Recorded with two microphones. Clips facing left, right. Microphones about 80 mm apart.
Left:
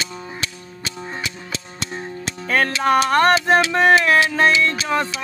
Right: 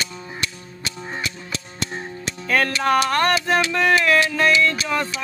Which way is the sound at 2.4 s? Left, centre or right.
Left.